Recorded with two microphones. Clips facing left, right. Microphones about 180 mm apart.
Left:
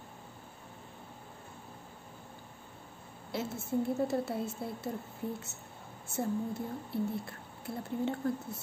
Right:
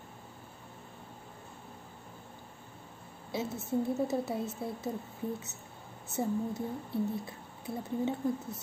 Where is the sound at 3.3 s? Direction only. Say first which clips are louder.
Right 1 dB; 15° right (ahead or behind).